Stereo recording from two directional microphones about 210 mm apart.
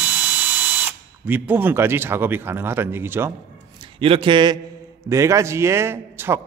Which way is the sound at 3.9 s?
25° right (ahead or behind).